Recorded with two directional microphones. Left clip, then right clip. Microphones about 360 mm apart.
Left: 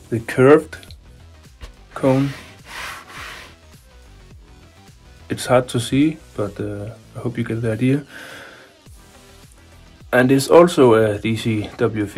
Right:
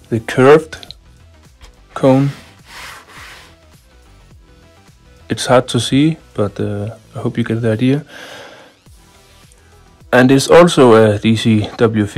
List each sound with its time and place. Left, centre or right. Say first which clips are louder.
0.1 s speech: right 4 dB; right
2.0 s music: right 6 dB; right
5.3 s speech: right 5 dB; right
10.0 s speech: right 5 dB; right